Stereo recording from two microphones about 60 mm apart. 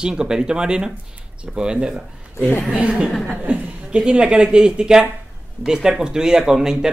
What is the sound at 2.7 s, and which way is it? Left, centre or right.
Speech, centre.